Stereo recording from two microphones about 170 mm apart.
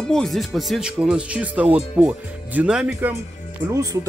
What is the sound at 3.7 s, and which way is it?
Speech, 20° right (ahead or behind).